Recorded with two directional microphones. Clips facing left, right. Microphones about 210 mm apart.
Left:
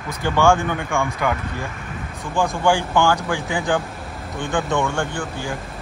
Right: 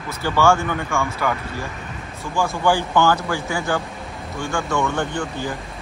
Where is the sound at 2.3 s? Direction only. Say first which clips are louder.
Left 1 dB; 15° left (ahead or behind).